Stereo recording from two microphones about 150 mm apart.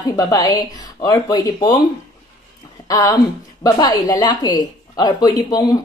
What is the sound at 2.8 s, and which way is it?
A woman's voice, 30° left (ahead or behind).